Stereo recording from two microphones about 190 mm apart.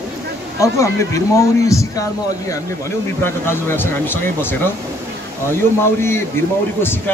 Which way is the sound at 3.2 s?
10° left (ahead or behind).